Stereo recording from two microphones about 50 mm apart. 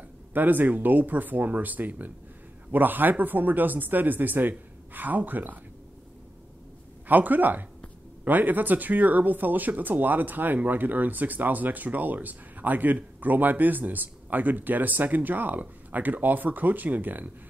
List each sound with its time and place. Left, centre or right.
0.3 s speech: right
7.1 s speech: right